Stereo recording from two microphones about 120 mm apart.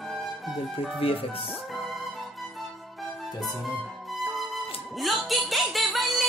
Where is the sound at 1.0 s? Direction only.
50° left (ahead or behind).